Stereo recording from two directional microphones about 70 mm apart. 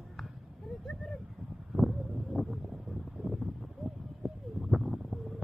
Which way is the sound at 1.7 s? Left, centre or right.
Centre.